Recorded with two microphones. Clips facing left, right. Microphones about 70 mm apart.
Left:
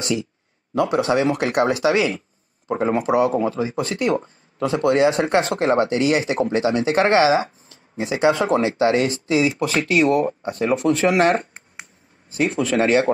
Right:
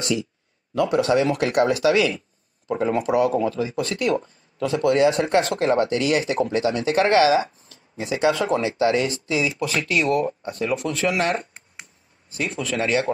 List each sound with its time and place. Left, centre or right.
0.7 s speech: centre; by 13.0 s left